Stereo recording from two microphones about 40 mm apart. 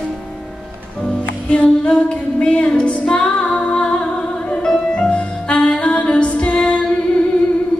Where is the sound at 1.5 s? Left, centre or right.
Left.